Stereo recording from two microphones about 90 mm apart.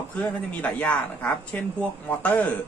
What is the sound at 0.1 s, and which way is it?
Speech, 15° left (ahead or behind).